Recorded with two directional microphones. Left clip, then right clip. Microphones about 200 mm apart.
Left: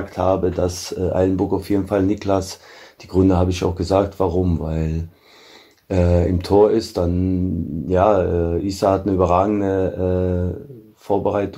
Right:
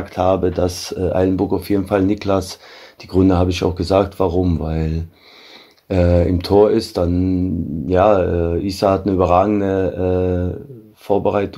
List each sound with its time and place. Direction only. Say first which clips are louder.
0.0 s speech: right 2 dB; 40° right (ahead or behind)